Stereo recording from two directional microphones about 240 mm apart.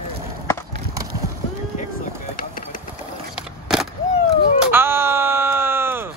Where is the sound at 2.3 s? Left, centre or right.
Left.